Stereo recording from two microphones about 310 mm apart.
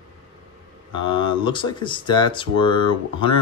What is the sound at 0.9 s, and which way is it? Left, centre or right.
Speech, centre.